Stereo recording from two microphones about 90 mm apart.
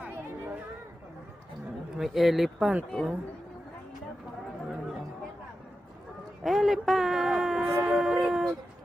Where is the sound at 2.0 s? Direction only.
Centre (ahead or behind).